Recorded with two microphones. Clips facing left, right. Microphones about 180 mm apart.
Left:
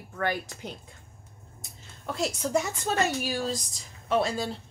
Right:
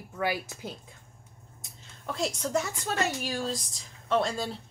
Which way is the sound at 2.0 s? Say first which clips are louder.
Left 1 dB; 5° left (ahead or behind).